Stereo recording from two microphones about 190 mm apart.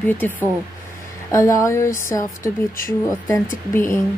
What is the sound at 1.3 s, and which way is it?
A woman's voice, 15° left (ahead or behind).